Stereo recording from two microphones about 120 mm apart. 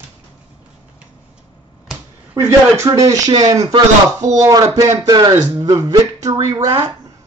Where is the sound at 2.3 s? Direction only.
20° right (ahead or behind).